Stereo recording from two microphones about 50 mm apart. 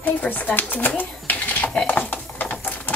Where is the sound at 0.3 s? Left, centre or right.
Left.